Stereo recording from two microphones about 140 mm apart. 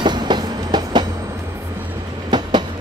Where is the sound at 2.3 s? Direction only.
35° right (ahead or behind).